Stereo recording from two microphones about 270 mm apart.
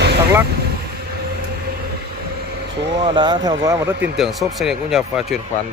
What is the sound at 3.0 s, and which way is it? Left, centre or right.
Speech, centre.